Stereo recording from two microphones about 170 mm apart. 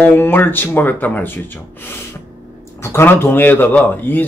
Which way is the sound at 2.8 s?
15° left (ahead or behind).